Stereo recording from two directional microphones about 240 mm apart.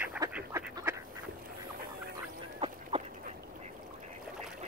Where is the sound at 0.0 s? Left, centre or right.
Centre.